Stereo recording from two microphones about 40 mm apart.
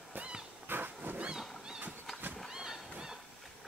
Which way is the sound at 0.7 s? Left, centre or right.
Right.